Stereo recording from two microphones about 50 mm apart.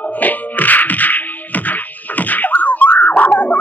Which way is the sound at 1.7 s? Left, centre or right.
Left.